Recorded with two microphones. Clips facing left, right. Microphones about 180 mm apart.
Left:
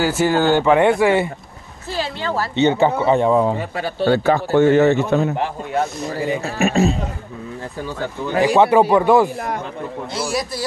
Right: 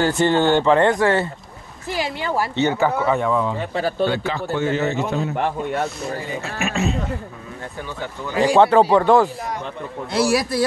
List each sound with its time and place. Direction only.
0.0 s speech: 5° left (ahead or behind)
1.9 s speech: 15° right (ahead or behind)
2.5 s speech: 20° left (ahead or behind)
4.0 s a man's voice: 45° left (ahead or behind); by 5.3 s 60° left (ahead or behind)
6.4 s speech: 35° left (ahead or behind)
8.5 s speech: 10° left (ahead or behind)
10.1 s a man's voice: 60° right (ahead or behind)